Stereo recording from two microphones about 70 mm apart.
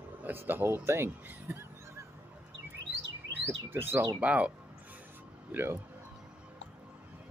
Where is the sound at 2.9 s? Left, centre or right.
Right.